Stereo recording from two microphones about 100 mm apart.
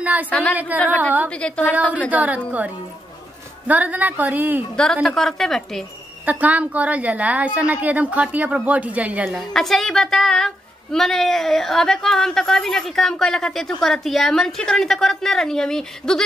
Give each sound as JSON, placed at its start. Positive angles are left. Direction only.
{"t": 0.0, "sound": "speech", "side_deg": -15}
{"t": 0.3, "sound": "speech", "side_deg": 15}
{"t": 1.6, "sound": "a woman's voice", "side_deg": -15}
{"t": 5.0, "sound": "a woman's voice", "side_deg": 5}
{"t": 6.2, "sound": "a woman's voice", "side_deg": -15}
{"t": 9.4, "sound": "a woman's voice", "side_deg": 5}